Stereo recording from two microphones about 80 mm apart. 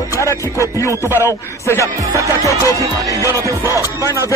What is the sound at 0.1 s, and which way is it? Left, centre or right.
Music, left.